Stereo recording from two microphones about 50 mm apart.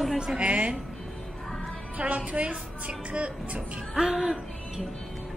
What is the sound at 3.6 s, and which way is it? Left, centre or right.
Speech, centre.